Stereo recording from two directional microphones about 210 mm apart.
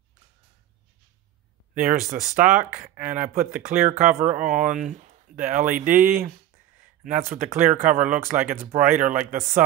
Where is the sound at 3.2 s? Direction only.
40° right (ahead or behind).